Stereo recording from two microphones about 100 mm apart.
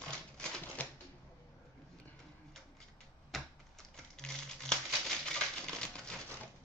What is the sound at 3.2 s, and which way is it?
Crumpling, centre (ahead or behind).